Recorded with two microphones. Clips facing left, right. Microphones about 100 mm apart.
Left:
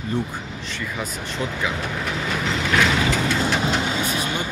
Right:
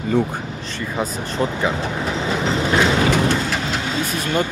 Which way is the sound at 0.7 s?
35° right (ahead or behind).